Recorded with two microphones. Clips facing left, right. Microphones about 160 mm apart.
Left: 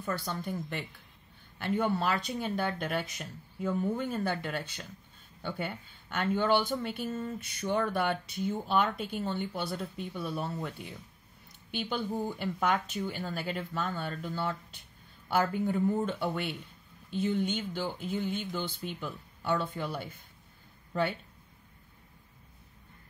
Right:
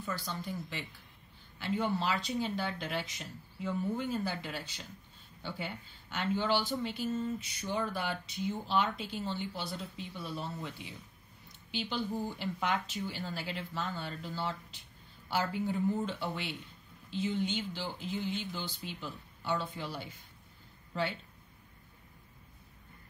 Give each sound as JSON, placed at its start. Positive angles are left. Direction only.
{"t": 0.0, "sound": "speech", "side_deg": 55}